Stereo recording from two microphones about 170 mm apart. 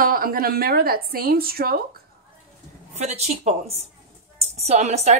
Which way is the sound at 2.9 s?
40° right (ahead or behind).